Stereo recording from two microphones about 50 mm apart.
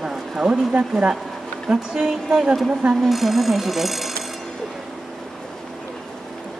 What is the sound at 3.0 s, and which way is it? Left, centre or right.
A woman's voice, centre.